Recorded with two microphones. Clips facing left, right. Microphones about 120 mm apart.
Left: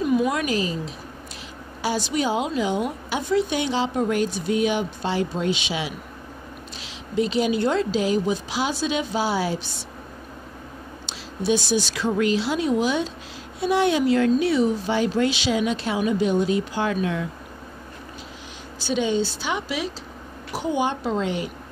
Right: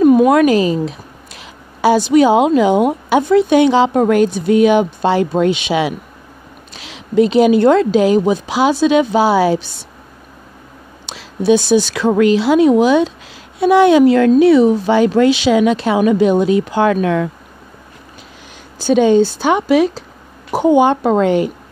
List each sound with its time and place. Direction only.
0.0 s a woman's voice: 55° right (ahead or behind); by 9.7 s 90° right
11.1 s a woman's voice: 70° right (ahead or behind)
14.3 s a woman's voice: 75° right (ahead or behind)
18.8 s a woman's voice: 50° right (ahead or behind)